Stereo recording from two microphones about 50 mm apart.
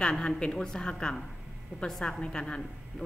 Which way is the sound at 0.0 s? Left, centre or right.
Centre.